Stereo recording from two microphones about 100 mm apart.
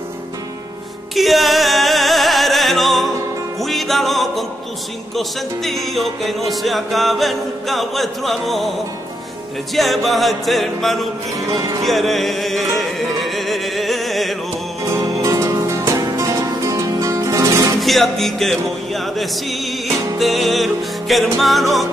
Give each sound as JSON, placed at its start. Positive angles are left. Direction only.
{"t": 1.1, "sound": "music", "side_deg": 0}
{"t": 9.8, "sound": "music", "side_deg": 0}
{"t": 14.9, "sound": "music", "side_deg": -30}
{"t": 17.7, "sound": "music", "side_deg": 0}